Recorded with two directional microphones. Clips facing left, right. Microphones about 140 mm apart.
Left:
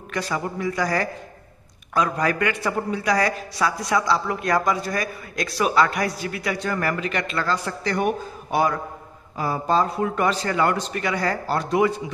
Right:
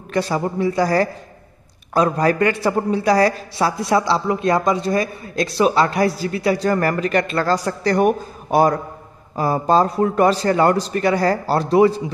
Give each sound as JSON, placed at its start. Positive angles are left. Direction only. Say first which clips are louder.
{"t": 0.1, "sound": "a man's voice", "louder": "right 6 dB", "side_deg": -30}